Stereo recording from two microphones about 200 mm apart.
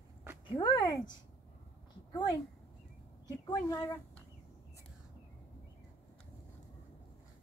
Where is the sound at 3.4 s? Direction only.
20° left (ahead or behind).